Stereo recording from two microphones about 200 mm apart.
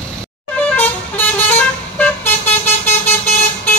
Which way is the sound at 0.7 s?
10° left (ahead or behind).